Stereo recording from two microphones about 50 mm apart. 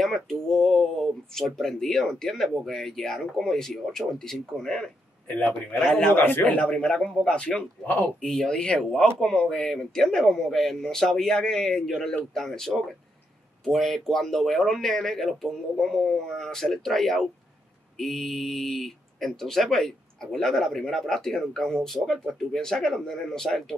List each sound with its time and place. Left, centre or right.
0.0 s speech: centre
6.4 s speech: left; by 23.6 s centre